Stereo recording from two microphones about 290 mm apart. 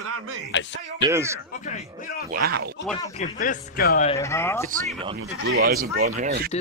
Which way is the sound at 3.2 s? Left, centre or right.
Left.